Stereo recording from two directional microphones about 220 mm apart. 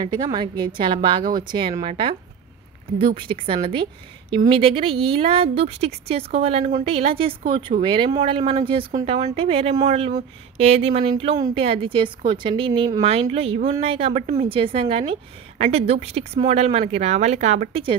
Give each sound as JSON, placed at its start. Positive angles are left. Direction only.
{"t": 0.0, "sound": "speech", "side_deg": -20}
{"t": 3.2, "sound": "speech", "side_deg": -25}